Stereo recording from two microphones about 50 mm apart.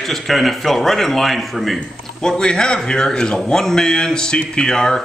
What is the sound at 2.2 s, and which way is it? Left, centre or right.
A man's voice, centre.